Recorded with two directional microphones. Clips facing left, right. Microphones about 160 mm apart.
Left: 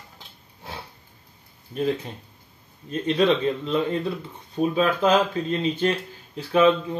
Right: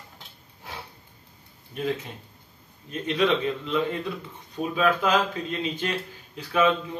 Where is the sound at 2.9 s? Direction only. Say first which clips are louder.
Left 3 dB; 35° left (ahead or behind).